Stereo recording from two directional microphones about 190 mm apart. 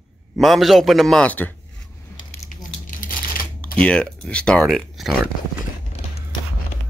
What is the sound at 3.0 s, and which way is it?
Typewriter, 50° left (ahead or behind).